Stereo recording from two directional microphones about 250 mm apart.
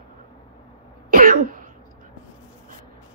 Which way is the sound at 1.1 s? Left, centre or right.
Right.